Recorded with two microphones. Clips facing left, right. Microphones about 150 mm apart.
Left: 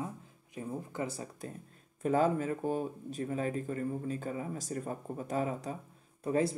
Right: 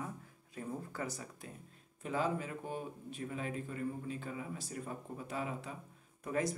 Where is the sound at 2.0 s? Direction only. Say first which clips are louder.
Left 8 dB; 45° left (ahead or behind).